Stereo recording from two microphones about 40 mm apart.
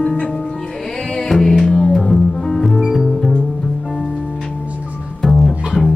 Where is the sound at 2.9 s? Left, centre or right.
Centre.